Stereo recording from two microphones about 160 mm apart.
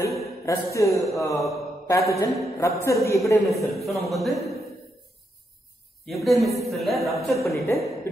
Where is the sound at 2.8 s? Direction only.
20° left (ahead or behind).